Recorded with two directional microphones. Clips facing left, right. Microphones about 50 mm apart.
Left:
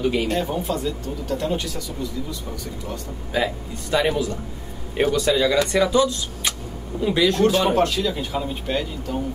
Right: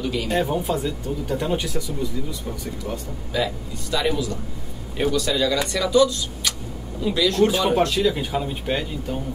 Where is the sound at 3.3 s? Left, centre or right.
Left.